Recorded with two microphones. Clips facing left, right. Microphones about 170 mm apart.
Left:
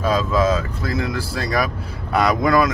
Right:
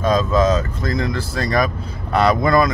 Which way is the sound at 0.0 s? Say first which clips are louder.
Right 2 dB; 5° left (ahead or behind).